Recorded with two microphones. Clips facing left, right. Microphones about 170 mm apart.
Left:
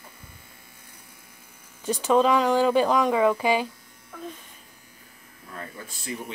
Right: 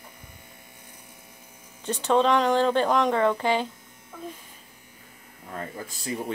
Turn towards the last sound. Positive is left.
turn(degrees=-30)  # may be behind; listen again after turning